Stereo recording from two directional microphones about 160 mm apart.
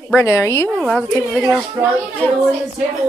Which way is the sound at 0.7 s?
Centre (ahead or behind).